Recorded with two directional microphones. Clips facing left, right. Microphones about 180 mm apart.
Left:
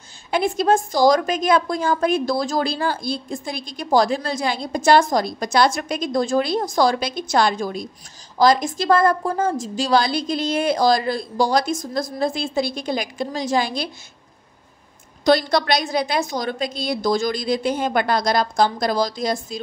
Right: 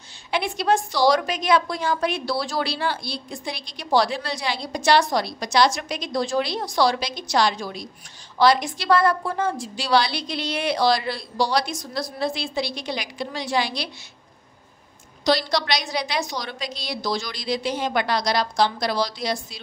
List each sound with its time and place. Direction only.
0.3 s a woman's voice: 45° left (ahead or behind)
15.2 s a woman's voice: 50° left (ahead or behind)